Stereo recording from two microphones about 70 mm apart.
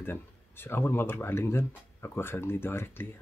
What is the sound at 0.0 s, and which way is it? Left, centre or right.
Speech, left.